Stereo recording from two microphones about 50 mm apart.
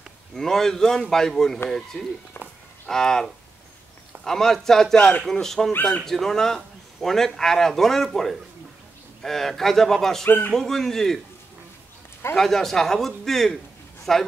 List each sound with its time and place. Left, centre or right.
0.3 s a man's voice: centre
10.2 s speech: left
10.5 s a man's voice: centre
12.4 s a man's voice: centre